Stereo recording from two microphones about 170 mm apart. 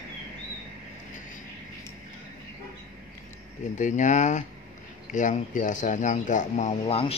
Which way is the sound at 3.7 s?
45° left (ahead or behind).